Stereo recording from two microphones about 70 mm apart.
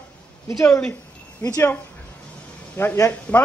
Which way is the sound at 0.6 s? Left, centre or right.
Centre.